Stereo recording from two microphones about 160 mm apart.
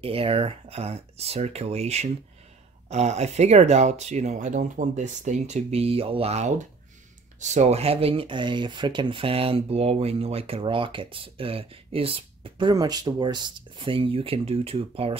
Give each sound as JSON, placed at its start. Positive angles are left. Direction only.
{"t": 0.0, "sound": "speech", "side_deg": -35}